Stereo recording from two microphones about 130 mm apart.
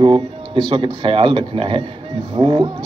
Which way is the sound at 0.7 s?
35° right (ahead or behind).